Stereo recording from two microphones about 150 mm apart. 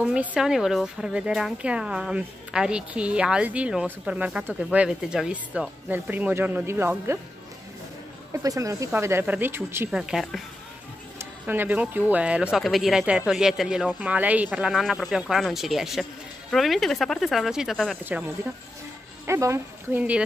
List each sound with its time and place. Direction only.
0.0 s speech: 10° right (ahead or behind)
8.3 s speech: 20° right (ahead or behind)
9.8 s speech: 5° right (ahead or behind)
18.0 s speech: 10° right (ahead or behind)